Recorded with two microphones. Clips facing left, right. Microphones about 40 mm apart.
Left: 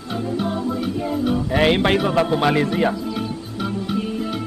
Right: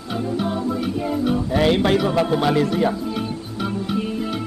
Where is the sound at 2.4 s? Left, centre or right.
Left.